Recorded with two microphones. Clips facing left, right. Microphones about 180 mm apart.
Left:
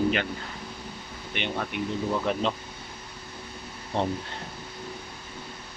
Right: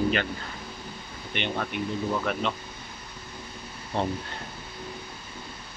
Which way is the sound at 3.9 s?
20° left (ahead or behind).